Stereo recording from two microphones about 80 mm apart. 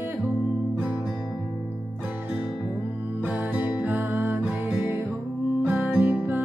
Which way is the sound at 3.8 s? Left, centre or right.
Right.